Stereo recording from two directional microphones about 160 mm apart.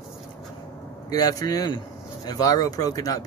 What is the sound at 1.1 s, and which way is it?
Speech, 25° left (ahead or behind).